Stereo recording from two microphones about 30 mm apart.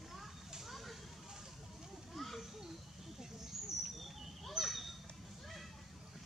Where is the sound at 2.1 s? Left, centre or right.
Centre.